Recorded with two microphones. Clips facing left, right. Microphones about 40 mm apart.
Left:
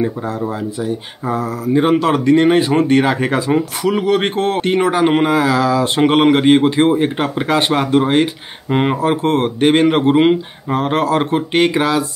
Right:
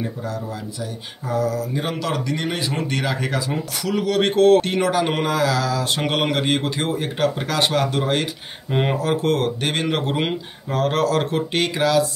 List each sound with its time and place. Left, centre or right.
0.0 s speech: left